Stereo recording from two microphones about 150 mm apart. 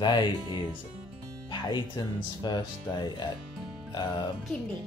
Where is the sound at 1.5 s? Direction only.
30° left (ahead or behind).